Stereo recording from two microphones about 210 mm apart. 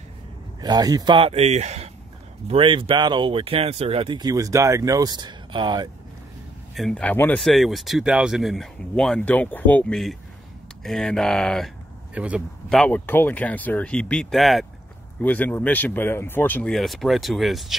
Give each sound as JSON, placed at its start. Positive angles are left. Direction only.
{"t": 0.6, "sound": "speech", "side_deg": -20}
{"t": 6.7, "sound": "speech", "side_deg": 0}
{"t": 12.7, "sound": "speech", "side_deg": 5}